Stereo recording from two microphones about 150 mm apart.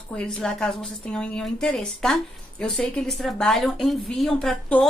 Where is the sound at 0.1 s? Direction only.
5° left (ahead or behind).